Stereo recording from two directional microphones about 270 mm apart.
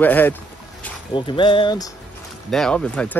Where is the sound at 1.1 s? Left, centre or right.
Centre.